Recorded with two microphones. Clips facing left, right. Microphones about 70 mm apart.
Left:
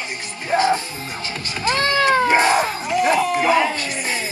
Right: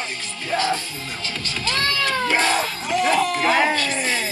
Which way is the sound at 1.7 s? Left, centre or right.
Left.